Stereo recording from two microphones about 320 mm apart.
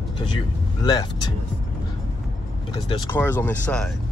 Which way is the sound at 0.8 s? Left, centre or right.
Centre.